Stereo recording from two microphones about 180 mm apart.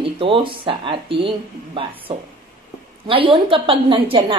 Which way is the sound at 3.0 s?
30° right (ahead or behind).